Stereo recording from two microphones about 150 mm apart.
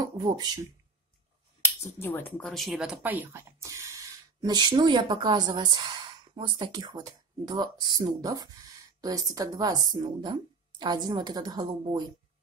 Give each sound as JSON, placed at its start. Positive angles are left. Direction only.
{"t": 0.0, "sound": "speech", "side_deg": -25}
{"t": 1.6, "sound": "speech", "side_deg": 15}